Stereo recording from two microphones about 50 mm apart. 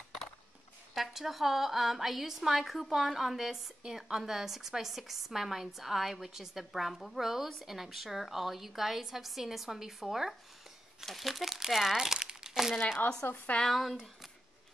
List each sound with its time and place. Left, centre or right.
0.9 s speech: centre
13.2 s speech: left
13.7 s speech: centre